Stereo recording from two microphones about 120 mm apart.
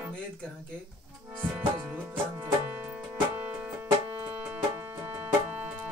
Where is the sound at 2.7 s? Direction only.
15° right (ahead or behind).